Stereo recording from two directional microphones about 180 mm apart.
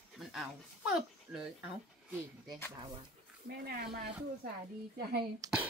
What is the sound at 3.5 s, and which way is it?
Speech, 60° right (ahead or behind).